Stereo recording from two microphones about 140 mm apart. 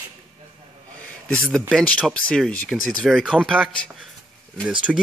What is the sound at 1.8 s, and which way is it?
Speech, 10° left (ahead or behind).